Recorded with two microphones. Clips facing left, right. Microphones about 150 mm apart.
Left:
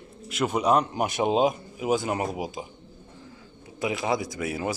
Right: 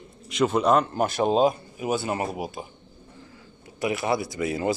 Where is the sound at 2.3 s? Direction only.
Centre (ahead or behind).